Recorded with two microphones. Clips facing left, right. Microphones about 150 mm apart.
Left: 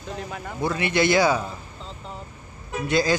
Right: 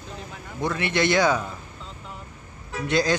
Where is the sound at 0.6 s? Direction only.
5° left (ahead or behind).